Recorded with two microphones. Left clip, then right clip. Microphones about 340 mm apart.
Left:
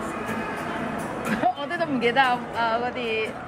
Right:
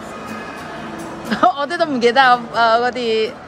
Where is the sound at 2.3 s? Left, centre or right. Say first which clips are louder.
Right 11 dB; right.